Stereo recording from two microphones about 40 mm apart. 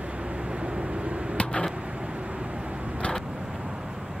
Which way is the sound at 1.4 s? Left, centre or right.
Left.